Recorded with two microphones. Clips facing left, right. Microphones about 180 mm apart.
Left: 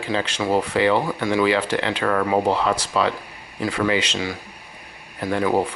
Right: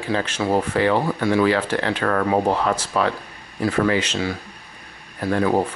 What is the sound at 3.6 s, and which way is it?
Speech, 15° left (ahead or behind).